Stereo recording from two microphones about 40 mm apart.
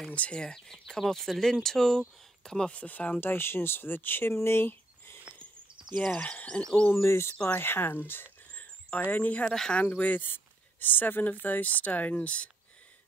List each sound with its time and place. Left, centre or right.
0.1 s speech: left
0.7 s speech: centre
2.9 s speech: left
3.2 s speech: left
5.9 s speech: left
6.9 s speech: left
7.5 s speech: left
8.5 s a sound: left
9.5 s speech: centre
9.8 s speech: left
10.2 s speech: left